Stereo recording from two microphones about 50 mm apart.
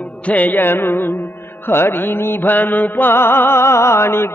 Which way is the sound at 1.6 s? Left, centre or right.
Left.